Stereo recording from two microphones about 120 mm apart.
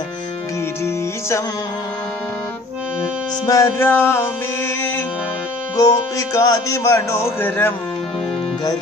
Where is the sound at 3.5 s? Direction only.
20° left (ahead or behind).